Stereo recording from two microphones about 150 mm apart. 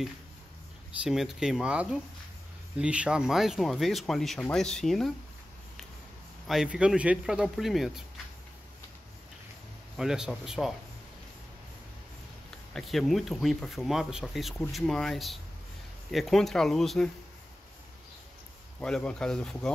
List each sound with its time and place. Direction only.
1.0 s speech: 5° right (ahead or behind)
6.4 s speech: 5° right (ahead or behind)
9.9 s speech: 5° right (ahead or behind)
12.7 s speech: centre (ahead or behind)
18.8 s speech: 5° left (ahead or behind)